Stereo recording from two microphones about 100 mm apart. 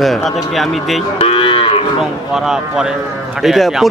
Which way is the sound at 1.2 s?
65° left (ahead or behind).